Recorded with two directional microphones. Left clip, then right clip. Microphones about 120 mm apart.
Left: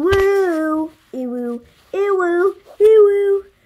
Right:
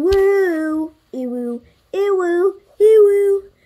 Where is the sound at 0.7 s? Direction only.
15° right (ahead or behind).